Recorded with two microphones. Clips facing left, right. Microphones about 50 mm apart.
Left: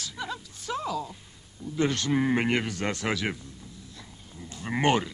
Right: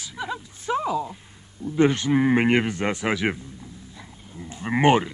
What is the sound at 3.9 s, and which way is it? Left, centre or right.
Livestock, right.